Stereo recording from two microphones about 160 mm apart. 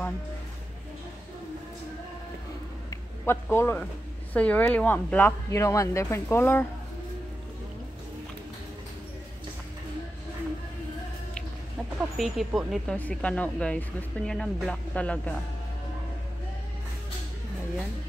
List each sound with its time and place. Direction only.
2.9 s a sound: 15° left (ahead or behind)
4.3 s speech: 10° left (ahead or behind)
12.2 s speech: centre (ahead or behind)